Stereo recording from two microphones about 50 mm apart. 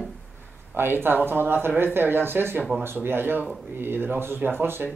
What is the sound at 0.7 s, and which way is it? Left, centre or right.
Speech, right.